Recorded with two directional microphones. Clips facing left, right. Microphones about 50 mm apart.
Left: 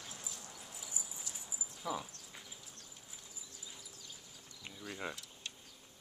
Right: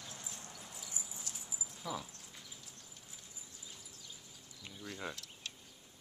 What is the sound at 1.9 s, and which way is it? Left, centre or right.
Dog, centre.